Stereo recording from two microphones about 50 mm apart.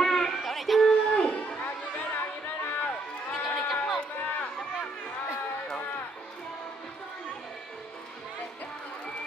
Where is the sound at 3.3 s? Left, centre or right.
Centre.